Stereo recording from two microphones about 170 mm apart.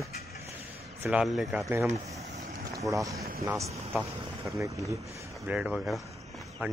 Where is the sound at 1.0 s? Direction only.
5° right (ahead or behind).